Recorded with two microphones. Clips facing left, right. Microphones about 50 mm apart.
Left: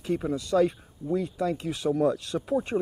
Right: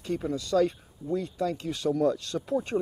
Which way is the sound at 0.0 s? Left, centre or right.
Centre.